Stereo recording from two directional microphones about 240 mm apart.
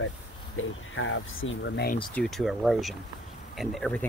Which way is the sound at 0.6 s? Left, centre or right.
Left.